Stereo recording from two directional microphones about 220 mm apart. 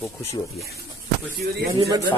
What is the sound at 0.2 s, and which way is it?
Speech, 15° left (ahead or behind).